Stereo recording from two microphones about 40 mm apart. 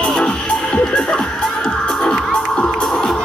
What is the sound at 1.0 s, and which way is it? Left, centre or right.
Music, centre.